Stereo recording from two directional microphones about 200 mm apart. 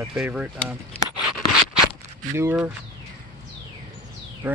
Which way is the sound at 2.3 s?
10° right (ahead or behind).